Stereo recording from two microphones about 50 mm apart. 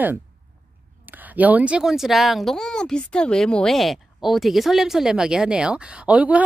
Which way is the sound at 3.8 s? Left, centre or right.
Centre.